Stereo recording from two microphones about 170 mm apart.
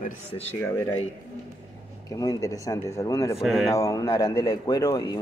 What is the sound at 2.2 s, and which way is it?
Speech, 20° left (ahead or behind).